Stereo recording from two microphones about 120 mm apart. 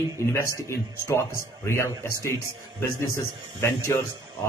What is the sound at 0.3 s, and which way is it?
A man's voice, 25° left (ahead or behind).